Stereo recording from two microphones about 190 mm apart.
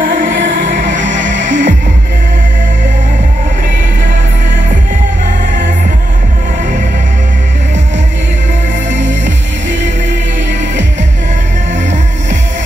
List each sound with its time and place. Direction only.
0.0 s music: 45° right (ahead or behind)